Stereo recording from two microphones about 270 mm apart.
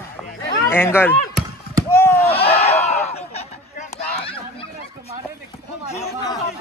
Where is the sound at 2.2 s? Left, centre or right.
Left.